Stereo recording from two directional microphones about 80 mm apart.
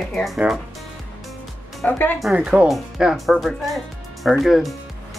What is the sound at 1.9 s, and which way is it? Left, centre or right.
Speech, left.